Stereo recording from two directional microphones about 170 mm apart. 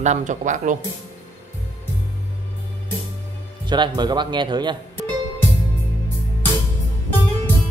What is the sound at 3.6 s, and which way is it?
Speech, 25° right (ahead or behind).